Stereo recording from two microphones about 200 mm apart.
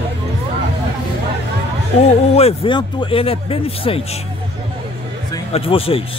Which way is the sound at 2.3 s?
25° left (ahead or behind).